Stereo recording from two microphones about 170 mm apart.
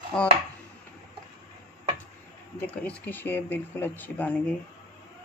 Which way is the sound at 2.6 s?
10° left (ahead or behind).